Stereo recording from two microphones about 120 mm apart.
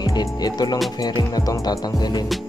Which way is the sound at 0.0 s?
35° left (ahead or behind).